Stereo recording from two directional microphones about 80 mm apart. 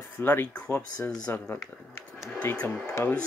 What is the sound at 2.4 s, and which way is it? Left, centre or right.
Speech, left.